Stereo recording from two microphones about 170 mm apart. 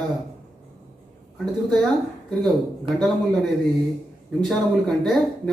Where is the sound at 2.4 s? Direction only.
Centre (ahead or behind).